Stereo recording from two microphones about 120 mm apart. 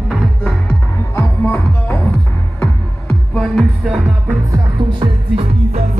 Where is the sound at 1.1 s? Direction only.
20° left (ahead or behind).